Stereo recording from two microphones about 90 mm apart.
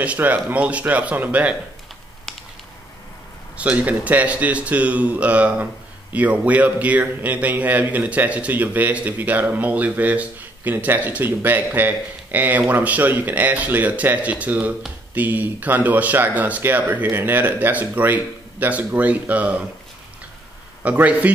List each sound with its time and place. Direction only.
0.0 s speech: 15° right (ahead or behind)
3.5 s speech: 15° right (ahead or behind)
20.8 s speech: 15° right (ahead or behind)